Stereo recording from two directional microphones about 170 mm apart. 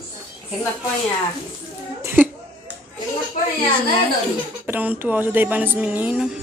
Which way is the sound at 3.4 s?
50° left (ahead or behind).